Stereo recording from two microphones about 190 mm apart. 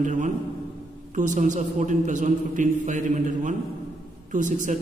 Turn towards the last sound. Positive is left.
turn(degrees=-40)  # may be behind; listen again after turning